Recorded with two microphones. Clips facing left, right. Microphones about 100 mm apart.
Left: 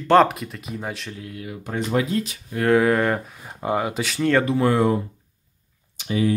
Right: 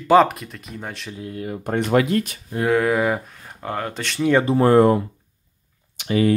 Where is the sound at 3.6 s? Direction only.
10° left (ahead or behind).